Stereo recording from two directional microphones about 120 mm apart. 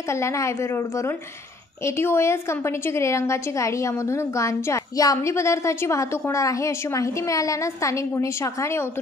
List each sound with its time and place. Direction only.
0.1 s a woman's voice: 25° left (ahead or behind)
1.9 s a woman's voice: 20° left (ahead or behind)